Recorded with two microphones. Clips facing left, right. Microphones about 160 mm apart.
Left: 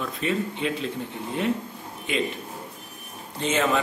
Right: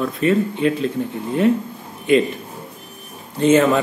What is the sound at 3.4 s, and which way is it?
Speech, 45° right (ahead or behind).